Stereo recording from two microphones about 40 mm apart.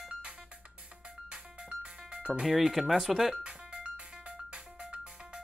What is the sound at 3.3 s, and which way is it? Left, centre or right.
Music, right.